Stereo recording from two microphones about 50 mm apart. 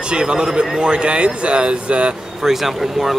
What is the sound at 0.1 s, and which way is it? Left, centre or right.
A man's voice, centre.